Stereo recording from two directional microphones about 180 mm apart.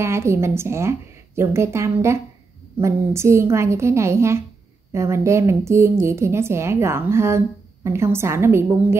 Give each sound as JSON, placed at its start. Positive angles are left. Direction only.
{"t": 0.0, "sound": "speech", "side_deg": -15}